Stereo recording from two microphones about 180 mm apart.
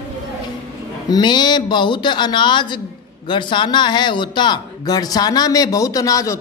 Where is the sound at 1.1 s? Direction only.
25° left (ahead or behind).